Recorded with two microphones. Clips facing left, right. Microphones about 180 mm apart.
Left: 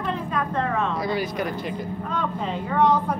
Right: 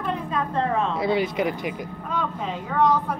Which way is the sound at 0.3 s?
25° right (ahead or behind).